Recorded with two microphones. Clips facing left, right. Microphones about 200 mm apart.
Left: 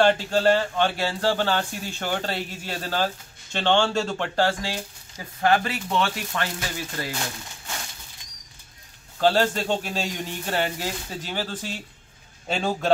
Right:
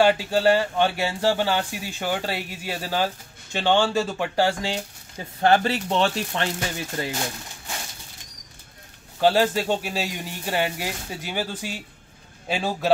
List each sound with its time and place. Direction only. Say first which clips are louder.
0.0 s speech: right 1 dB; 10° right (ahead or behind)
9.2 s a man's voice: right 1 dB; 10° right (ahead or behind)